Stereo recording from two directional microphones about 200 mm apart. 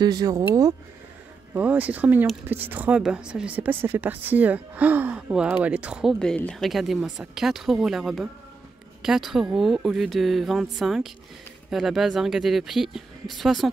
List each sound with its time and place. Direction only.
0.0 s speech: 20° right (ahead or behind)
1.5 s speech: 10° right (ahead or behind)